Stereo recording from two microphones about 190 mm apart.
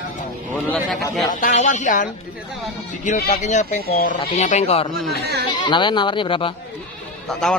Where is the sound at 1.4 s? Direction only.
40° left (ahead or behind).